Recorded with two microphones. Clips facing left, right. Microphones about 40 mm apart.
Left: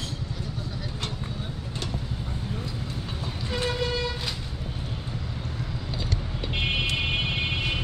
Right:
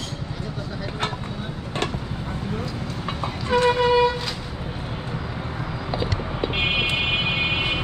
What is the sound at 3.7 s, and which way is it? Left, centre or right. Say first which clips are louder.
Vehicle: right 12 dB; right.